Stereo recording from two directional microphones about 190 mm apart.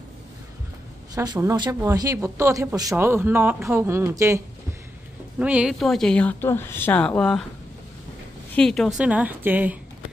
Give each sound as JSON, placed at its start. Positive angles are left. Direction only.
{"t": 1.1, "sound": "speech", "side_deg": -20}
{"t": 5.4, "sound": "speech", "side_deg": -5}
{"t": 8.5, "sound": "speech", "side_deg": 0}